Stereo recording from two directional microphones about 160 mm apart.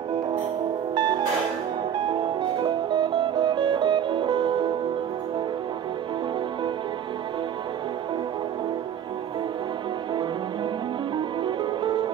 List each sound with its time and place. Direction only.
2.6 s music: 30° right (ahead or behind)
11.1 s music: 30° right (ahead or behind)